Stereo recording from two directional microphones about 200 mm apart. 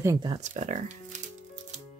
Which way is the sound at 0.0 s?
20° right (ahead or behind).